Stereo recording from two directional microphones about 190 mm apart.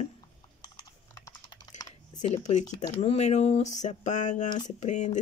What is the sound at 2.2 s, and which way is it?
Speech, 35° left (ahead or behind).